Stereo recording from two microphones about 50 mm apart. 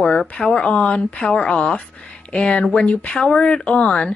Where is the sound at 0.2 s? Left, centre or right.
Centre.